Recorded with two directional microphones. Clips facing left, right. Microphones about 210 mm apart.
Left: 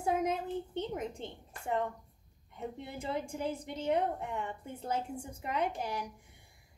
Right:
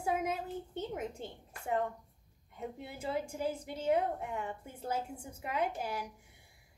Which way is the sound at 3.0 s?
5° right (ahead or behind).